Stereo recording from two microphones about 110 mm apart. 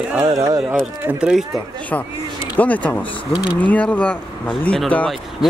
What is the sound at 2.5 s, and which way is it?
Speech, 15° left (ahead or behind).